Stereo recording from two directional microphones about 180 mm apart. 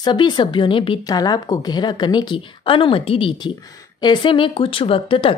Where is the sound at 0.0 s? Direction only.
25° left (ahead or behind).